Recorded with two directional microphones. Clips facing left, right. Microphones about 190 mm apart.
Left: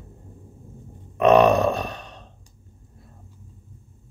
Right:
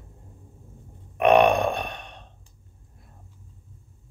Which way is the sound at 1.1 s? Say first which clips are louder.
Left 2 dB; 35° left (ahead or behind).